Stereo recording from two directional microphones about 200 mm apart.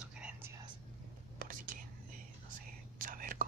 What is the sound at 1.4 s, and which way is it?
Whispering, 45° right (ahead or behind).